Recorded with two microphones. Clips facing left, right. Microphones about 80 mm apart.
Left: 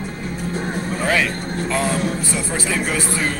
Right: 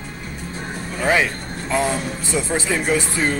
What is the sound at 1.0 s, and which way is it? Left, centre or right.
Speech, right.